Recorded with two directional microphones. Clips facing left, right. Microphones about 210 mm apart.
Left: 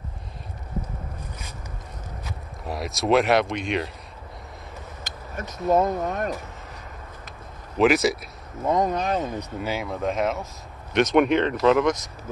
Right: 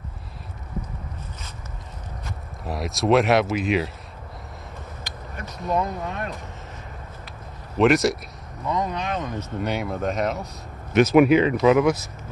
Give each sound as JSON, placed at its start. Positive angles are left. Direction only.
{"t": 2.2, "sound": "speech", "side_deg": 0}
{"t": 5.8, "sound": "speech", "side_deg": 45}
{"t": 7.7, "sound": "speech", "side_deg": 0}
{"t": 8.6, "sound": "speech", "side_deg": 45}
{"t": 9.6, "sound": "speech", "side_deg": 0}